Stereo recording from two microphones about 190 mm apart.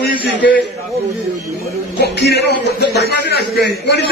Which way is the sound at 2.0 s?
60° left (ahead or behind).